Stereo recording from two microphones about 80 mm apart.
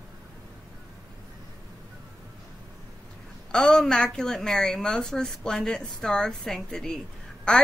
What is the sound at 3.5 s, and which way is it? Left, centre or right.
A woman's voice, centre.